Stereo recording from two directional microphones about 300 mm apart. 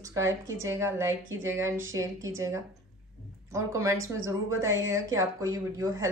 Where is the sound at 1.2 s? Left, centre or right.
Right.